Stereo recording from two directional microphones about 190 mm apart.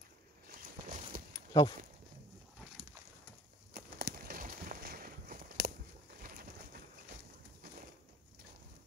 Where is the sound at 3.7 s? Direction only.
55° right (ahead or behind).